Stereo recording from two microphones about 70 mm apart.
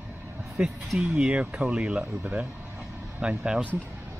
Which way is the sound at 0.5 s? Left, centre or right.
Centre.